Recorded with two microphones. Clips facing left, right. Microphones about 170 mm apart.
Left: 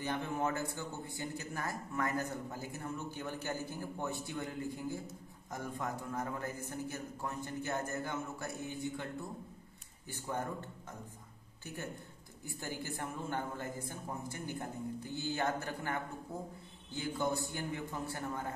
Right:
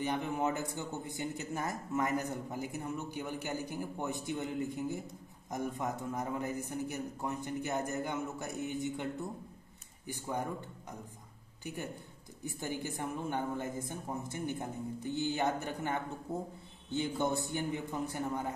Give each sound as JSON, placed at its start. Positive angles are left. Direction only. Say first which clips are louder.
{"t": 0.0, "sound": "a man's voice", "louder": "right 3 dB", "side_deg": -20}
{"t": 11.6, "sound": "speech", "louder": "right 3 dB", "side_deg": -15}